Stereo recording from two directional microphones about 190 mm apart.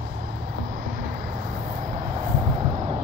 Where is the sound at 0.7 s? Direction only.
45° right (ahead or behind); by 3.0 s 30° right (ahead or behind).